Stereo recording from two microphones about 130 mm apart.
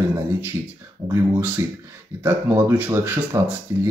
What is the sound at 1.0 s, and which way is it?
A man's voice, 25° right (ahead or behind).